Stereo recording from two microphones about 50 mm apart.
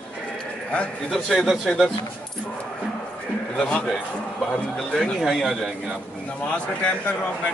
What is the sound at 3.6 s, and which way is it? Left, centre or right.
Speech, left.